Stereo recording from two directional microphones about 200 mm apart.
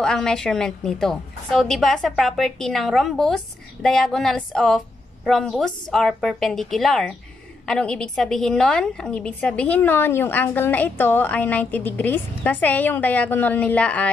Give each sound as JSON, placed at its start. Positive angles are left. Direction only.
{"t": 0.0, "sound": "a woman's voice", "side_deg": 5}